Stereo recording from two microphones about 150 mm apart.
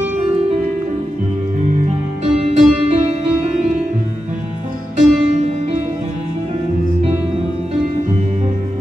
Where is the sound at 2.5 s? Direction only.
45° right (ahead or behind).